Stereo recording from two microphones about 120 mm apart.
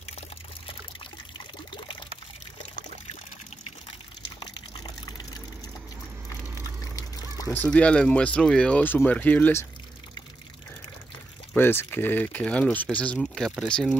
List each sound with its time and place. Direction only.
4.4 s liquid: 35° left (ahead or behind)
6.6 s a sound: 30° left (ahead or behind)
7.5 s speech: 10° left (ahead or behind)
11.5 s speech: 15° left (ahead or behind)